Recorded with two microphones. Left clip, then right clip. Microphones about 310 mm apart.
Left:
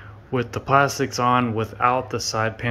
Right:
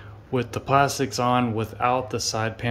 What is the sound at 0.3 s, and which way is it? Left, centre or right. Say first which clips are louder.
Speech: left 2 dB; centre.